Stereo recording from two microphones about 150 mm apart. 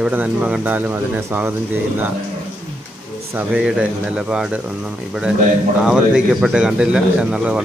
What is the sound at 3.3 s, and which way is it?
A man's voice, 5° right (ahead or behind).